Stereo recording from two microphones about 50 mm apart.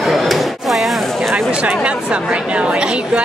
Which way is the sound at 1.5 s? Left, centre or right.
Right.